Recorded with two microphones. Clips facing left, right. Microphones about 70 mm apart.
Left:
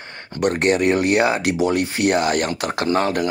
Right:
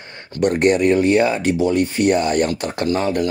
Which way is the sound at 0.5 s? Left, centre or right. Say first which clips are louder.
Right 3 dB; left.